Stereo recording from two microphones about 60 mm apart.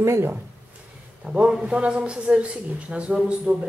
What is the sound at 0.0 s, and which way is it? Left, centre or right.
Speech, right.